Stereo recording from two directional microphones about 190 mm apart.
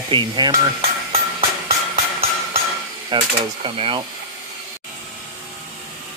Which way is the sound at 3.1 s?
30° right (ahead or behind).